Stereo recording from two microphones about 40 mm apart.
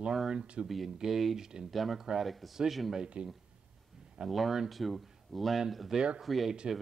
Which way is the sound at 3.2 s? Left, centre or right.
Right.